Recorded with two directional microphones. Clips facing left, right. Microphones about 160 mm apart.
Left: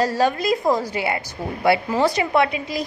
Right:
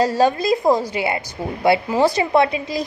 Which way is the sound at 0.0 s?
30° right (ahead or behind).